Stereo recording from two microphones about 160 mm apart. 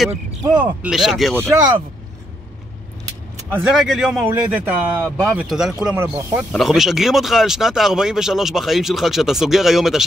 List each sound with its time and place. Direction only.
0.4 s speech: 25° right (ahead or behind)
0.7 s speech: 5° right (ahead or behind)
3.4 s speech: 15° right (ahead or behind)
3.7 s speech: centre (ahead or behind)